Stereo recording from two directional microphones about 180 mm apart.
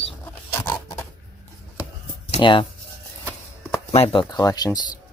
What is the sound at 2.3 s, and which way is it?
Speech, 25° left (ahead or behind).